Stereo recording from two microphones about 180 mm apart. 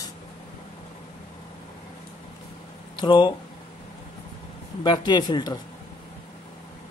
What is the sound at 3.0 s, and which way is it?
Speech, 25° left (ahead or behind).